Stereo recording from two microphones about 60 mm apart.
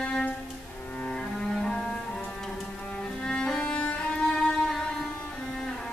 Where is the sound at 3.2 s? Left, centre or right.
Centre.